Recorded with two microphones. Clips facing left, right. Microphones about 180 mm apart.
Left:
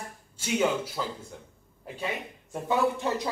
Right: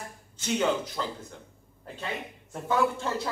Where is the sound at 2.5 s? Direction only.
15° left (ahead or behind).